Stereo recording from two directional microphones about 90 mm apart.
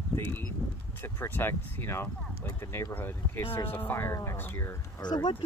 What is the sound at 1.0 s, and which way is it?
Speech, 25° left (ahead or behind).